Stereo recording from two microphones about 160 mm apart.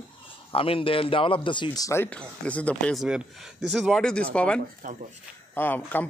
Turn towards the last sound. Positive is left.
turn(degrees=10)  # may be behind; listen again after turning